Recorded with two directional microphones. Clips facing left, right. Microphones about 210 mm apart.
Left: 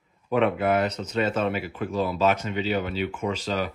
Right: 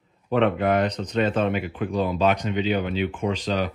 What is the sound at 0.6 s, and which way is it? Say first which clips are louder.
Speech: right 2 dB; 35° right (ahead or behind).